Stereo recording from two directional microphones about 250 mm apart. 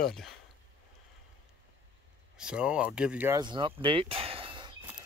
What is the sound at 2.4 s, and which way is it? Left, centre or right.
Speech, centre.